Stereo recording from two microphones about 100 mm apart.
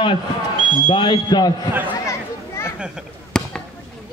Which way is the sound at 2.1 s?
30° left (ahead or behind).